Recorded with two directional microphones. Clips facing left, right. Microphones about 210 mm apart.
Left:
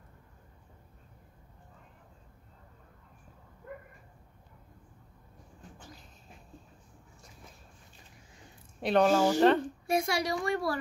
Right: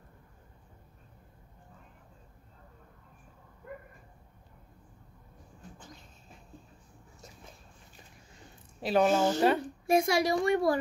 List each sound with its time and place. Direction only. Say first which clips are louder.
8.8 s speech: left 1 dB; centre (ahead or behind)
9.1 s speech: left 1 dB; 20° right (ahead or behind)
9.4 s speech: left 3 dB; 10° right (ahead or behind)
9.9 s speech: right 4 dB; 20° right (ahead or behind)